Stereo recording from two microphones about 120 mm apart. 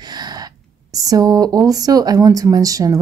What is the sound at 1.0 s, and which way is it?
Speech, 30° right (ahead or behind).